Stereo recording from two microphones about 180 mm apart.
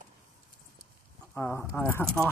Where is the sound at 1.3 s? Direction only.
15° left (ahead or behind).